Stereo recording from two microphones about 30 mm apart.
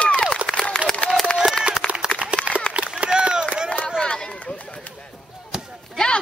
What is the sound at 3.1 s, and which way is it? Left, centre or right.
Run, right.